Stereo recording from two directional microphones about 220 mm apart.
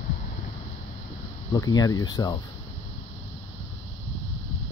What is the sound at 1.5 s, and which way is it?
Speech, 15° left (ahead or behind).